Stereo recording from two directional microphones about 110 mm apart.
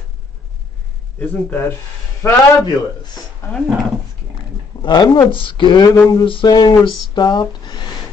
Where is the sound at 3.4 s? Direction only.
25° left (ahead or behind).